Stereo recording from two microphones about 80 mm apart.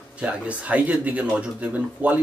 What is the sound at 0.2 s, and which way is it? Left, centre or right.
Speech, centre.